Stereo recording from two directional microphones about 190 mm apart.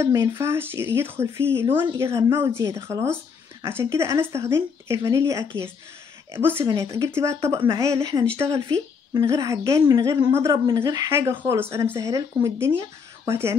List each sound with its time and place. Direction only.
0.0 s a woman's voice: 15° right (ahead or behind)